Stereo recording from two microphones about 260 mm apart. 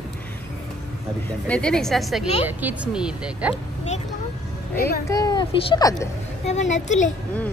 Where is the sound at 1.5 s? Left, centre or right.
Centre.